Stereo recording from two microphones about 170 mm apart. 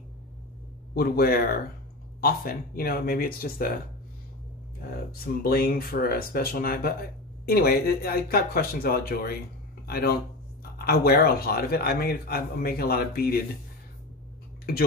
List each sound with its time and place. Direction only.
0.9 s speech: 60° left (ahead or behind)
5.2 s speech: 60° left (ahead or behind)